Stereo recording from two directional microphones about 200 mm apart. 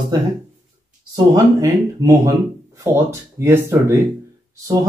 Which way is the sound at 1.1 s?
20° right (ahead or behind).